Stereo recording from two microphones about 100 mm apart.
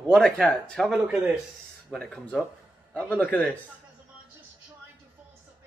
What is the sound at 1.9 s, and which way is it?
A man's voice, 10° left (ahead or behind).